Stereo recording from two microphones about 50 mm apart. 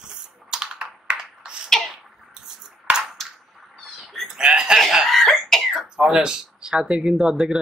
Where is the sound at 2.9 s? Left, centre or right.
Right.